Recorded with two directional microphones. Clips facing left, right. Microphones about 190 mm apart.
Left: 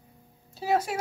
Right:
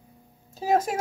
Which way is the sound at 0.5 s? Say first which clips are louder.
Right 3 dB; 40° right (ahead or behind).